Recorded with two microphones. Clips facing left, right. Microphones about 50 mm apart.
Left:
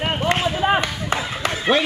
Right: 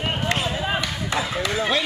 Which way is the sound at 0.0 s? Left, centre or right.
Left.